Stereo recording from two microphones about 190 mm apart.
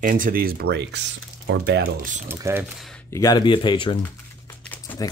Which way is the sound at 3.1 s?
20° left (ahead or behind).